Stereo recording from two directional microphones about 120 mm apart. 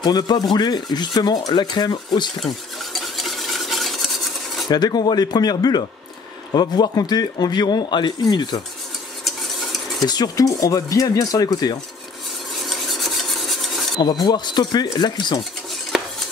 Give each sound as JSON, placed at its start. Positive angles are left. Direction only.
{"t": 0.0, "sound": "rub", "side_deg": 35}
{"t": 2.4, "sound": "stir", "side_deg": 0}
{"t": 4.6, "sound": "rub", "side_deg": 35}
{"t": 9.2, "sound": "stir", "side_deg": 0}
{"t": 10.0, "sound": "speech", "side_deg": 35}
{"t": 12.6, "sound": "stir", "side_deg": 0}
{"t": 14.2, "sound": "rub", "side_deg": 35}